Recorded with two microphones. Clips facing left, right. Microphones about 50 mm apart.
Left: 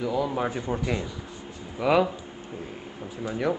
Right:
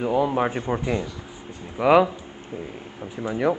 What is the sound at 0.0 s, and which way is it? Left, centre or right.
Speech, right.